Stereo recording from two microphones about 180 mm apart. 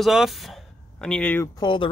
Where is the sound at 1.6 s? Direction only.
25° left (ahead or behind).